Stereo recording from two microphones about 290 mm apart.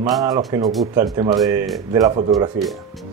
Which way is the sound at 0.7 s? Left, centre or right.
Centre.